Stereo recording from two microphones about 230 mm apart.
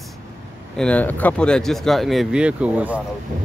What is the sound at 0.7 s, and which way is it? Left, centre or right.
Speech, centre.